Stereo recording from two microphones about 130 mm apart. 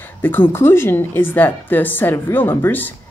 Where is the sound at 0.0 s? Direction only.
15° left (ahead or behind).